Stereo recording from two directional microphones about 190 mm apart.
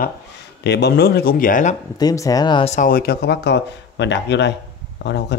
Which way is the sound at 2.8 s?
50° left (ahead or behind).